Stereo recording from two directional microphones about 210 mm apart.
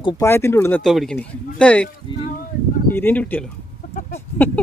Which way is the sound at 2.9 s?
10° left (ahead or behind).